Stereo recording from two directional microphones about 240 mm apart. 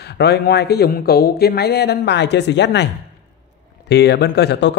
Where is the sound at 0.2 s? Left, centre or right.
Left.